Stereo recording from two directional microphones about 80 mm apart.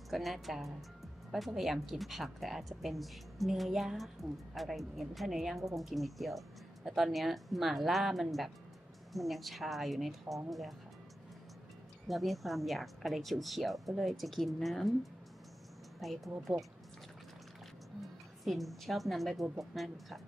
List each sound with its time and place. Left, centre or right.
0.1 s a woman's voice: centre
12.1 s a woman's voice: centre
16.0 s a woman's voice: centre
18.4 s a woman's voice: centre